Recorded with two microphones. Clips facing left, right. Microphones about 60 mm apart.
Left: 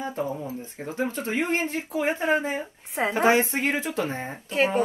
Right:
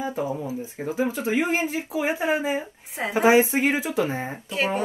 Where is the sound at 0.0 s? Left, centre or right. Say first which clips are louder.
Right 2 dB; centre.